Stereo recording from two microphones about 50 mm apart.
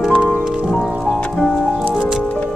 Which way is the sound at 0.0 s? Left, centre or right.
Centre.